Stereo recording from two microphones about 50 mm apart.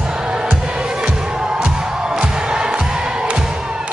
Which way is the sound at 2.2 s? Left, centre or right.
Centre.